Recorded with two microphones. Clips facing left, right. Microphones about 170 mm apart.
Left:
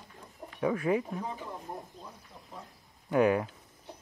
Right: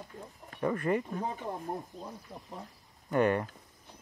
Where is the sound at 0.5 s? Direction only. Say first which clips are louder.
Left 1 dB; 5° left (ahead or behind).